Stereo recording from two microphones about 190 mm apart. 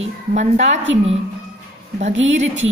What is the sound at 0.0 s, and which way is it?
Speech, 35° right (ahead or behind).